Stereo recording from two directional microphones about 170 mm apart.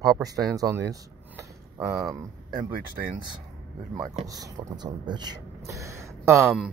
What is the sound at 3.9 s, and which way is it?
Speech, 20° right (ahead or behind).